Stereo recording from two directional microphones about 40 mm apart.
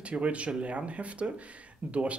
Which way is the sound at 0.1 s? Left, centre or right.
Right.